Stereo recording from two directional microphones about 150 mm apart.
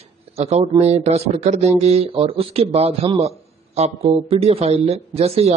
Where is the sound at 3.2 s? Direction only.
45° right (ahead or behind).